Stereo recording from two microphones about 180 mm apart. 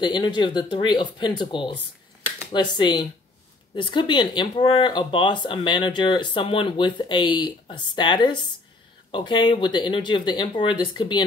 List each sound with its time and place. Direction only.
0.0 s speech: 25° left (ahead or behind)